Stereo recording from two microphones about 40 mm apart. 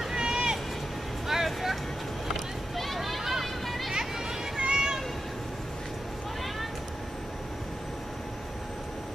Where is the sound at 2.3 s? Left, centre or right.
Centre.